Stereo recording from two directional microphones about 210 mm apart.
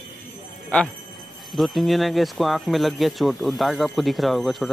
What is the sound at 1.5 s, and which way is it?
Speech, centre (ahead or behind).